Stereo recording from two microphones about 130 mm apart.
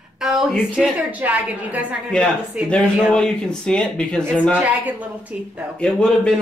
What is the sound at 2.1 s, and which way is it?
A man's voice, 5° left (ahead or behind).